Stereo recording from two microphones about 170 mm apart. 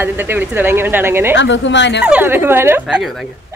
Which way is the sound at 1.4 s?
90° left.